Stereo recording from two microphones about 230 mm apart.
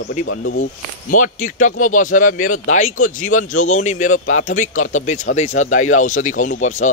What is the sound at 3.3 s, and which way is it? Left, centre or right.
Speech, left.